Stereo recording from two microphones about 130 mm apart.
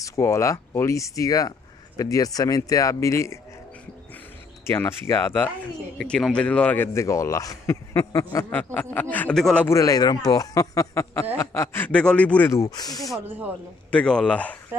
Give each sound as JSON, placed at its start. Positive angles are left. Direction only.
{"t": 0.0, "sound": "speech", "side_deg": 20}
{"t": 4.6, "sound": "speech", "side_deg": 20}
{"t": 5.9, "sound": "speech", "side_deg": 5}
{"t": 9.1, "sound": "speech", "side_deg": 10}
{"t": 9.7, "sound": "speech", "side_deg": 25}
{"t": 13.8, "sound": "speech", "side_deg": 5}